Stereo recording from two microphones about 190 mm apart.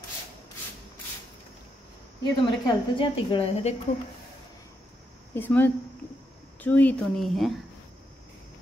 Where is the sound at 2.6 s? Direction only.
25° left (ahead or behind).